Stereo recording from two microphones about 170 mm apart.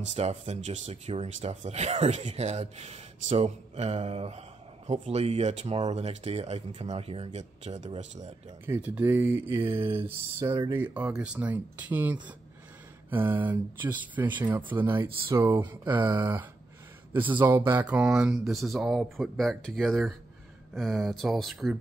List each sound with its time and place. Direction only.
0.1 s speech: 40° right (ahead or behind)
8.6 s speech: 10° right (ahead or behind)
9.5 s mantra: 30° right (ahead or behind)
10.8 s speech: 10° right (ahead or behind)